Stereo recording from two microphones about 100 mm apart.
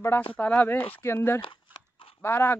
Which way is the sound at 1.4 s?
55° left (ahead or behind).